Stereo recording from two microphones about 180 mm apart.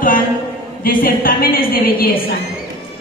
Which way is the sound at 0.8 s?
55° left (ahead or behind).